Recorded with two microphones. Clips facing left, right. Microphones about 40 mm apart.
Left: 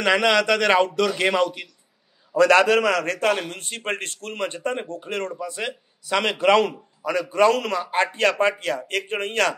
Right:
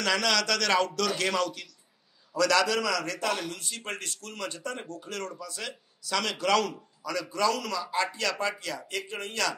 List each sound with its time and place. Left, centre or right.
0.0 s a man's voice: left
2.3 s a man's voice: left